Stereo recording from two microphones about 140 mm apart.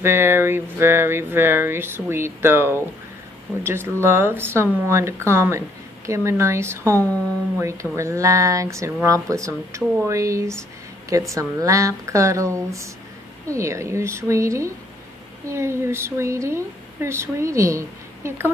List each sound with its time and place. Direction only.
0.0 s speech: 15° right (ahead or behind)